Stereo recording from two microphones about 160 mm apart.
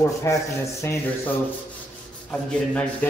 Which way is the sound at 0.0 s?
15° left (ahead or behind).